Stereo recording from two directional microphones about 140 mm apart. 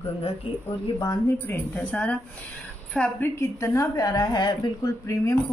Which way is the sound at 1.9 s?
10° left (ahead or behind).